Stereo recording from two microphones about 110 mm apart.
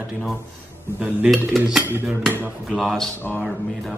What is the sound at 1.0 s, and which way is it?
Speech, 15° right (ahead or behind).